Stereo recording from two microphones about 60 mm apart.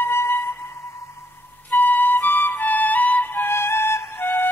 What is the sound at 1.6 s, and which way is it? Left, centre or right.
Flute, left.